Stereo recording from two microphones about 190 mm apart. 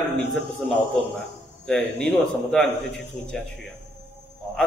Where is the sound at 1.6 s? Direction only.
5° left (ahead or behind).